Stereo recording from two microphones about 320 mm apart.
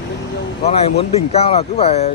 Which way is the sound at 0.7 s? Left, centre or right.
Centre.